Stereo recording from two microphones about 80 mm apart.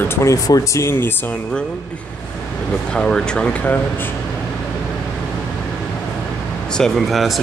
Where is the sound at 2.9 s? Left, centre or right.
Centre.